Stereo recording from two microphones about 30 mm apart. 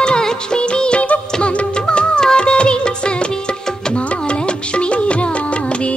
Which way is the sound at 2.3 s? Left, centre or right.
Left.